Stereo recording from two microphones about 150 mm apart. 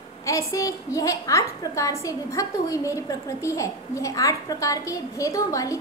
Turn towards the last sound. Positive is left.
turn(degrees=20)  # may be behind; listen again after turning